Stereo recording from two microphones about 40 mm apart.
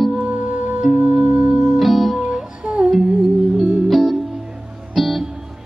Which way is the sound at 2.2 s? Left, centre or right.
Right.